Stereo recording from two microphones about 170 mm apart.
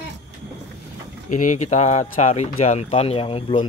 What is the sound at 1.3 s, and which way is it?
Speech, 45° left (ahead or behind).